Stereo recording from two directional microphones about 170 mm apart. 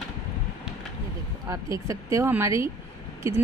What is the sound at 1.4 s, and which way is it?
A woman's voice, 20° right (ahead or behind).